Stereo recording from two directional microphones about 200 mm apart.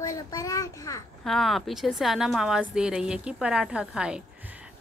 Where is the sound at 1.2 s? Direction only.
Centre (ahead or behind).